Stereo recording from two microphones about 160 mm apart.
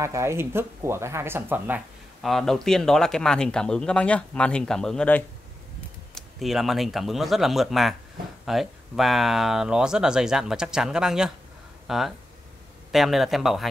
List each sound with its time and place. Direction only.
0.0 s speech: 15° right (ahead or behind)
2.2 s speech: centre (ahead or behind)